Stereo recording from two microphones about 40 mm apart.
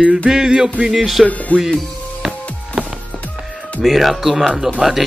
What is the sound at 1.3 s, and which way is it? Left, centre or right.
Speech, left.